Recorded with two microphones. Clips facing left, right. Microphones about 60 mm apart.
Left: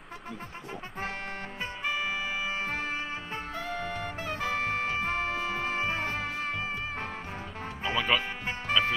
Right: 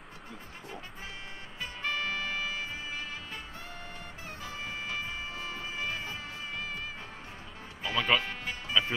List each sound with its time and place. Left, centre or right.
1.8 s music: centre
2.6 s music: left
3.0 s music: left
3.5 s music: left
4.6 s music: left
5.3 s music: left
5.8 s music: left
6.1 s music: left
6.5 s music: left
7.9 s music: centre
8.7 s music: left